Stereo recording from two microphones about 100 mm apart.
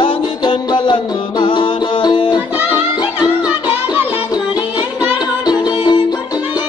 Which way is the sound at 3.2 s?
15° right (ahead or behind).